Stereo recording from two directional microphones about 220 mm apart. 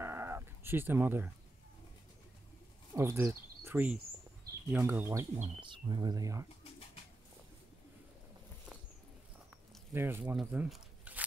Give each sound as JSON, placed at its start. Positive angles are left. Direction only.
{"t": 0.0, "sound": "a sound", "side_deg": -10}
{"t": 2.9, "sound": "speech", "side_deg": -10}
{"t": 5.4, "sound": "speech", "side_deg": -20}
{"t": 9.9, "sound": "speech", "side_deg": -10}